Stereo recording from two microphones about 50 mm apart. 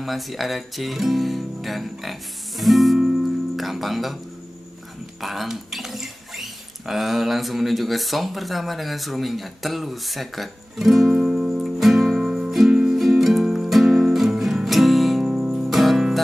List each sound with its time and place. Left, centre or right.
0.0 s speech: centre
5.2 s speech: centre
11.1 s music: centre
15.2 s music: centre
15.5 s music: centre